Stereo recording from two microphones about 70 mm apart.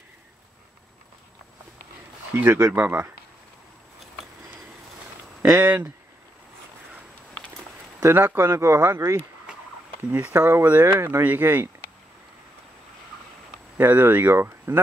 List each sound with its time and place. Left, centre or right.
2.3 s speech: right
5.5 s speech: right
8.0 s speech: right
10.1 s speech: right
10.4 s speech: right
13.7 s speech: right